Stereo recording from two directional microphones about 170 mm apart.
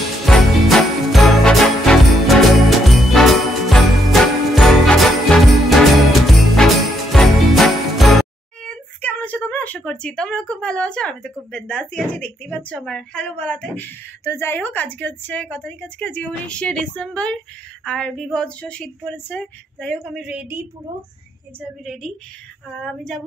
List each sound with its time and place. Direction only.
0.2 s jingle bell: centre (ahead or behind)
17.8 s a woman's voice: 5° left (ahead or behind)
20.2 s a woman's voice: 10° right (ahead or behind)